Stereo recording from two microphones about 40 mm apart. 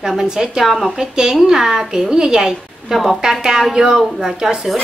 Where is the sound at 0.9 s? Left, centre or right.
Centre.